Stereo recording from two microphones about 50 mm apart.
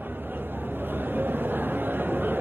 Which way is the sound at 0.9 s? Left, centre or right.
Right.